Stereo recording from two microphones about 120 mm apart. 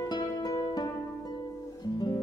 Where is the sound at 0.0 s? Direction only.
30° left (ahead or behind).